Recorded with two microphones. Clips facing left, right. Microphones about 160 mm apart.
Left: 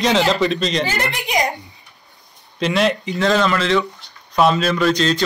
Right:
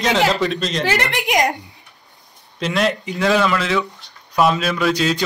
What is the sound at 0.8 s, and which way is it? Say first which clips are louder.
Speech: right 3 dB; 75° right (ahead or behind).